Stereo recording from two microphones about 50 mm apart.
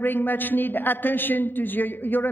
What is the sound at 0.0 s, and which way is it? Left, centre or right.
A woman's voice, left.